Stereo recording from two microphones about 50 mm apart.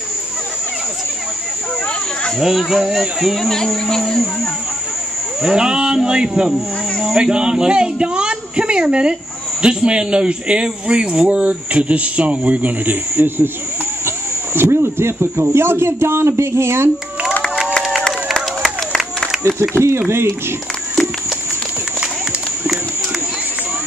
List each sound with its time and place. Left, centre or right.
2.3 s speech: centre
3.4 s speech: centre
5.4 s cattle: centre
7.1 s speech: centre; by 13.5 s right
14.0 s speech: right
18.0 s run: centre
19.3 s a sound: centre
19.8 s speech: right